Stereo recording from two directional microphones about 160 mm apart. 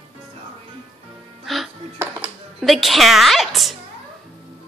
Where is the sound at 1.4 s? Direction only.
Centre (ahead or behind).